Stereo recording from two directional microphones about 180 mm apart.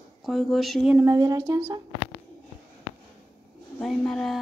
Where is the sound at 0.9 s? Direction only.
20° right (ahead or behind).